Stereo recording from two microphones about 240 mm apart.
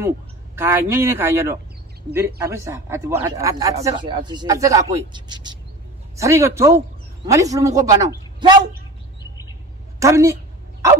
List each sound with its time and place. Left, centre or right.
0.6 s speech: centre
9.9 s a woman's voice: centre